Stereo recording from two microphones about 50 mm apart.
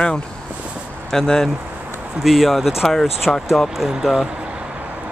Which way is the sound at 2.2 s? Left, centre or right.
Centre.